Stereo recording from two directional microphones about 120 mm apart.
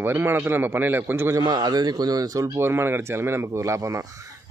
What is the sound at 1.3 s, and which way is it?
A man's voice, 35° right (ahead or behind).